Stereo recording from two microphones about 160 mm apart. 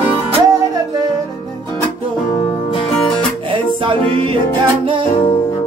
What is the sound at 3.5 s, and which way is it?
Music, 30° right (ahead or behind).